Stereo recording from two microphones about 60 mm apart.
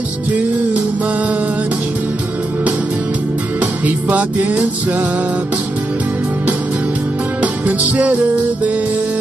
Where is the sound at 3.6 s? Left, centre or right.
Right.